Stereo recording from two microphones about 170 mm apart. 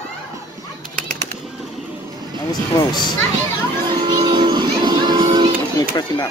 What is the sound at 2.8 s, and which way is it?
Speech, 25° left (ahead or behind).